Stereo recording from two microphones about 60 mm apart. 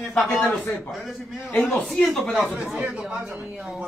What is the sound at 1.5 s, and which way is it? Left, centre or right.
Speech, left.